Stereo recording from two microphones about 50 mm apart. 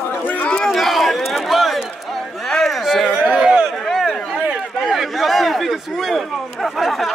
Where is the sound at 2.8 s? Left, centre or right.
Centre.